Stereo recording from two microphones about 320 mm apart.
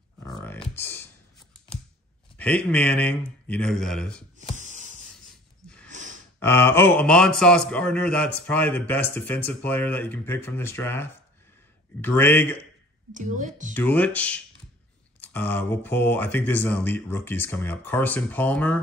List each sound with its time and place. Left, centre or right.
0.2 s music: centre
0.6 s a sound: centre
2.3 s a man's voice: centre
4.6 s a sound: right
5.9 s sigh: right
6.4 s a man's voice: centre
13.1 s a woman's voice: right
13.7 s a man's voice: centre